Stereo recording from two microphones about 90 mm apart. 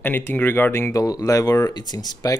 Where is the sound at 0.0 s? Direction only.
25° left (ahead or behind).